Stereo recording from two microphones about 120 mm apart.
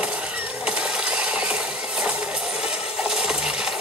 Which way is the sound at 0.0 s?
10° right (ahead or behind).